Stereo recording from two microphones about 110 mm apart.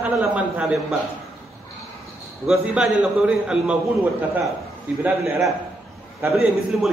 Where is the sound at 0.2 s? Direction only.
10° right (ahead or behind).